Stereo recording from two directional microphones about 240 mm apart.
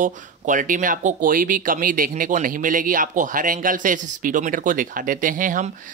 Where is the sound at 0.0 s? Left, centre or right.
Right.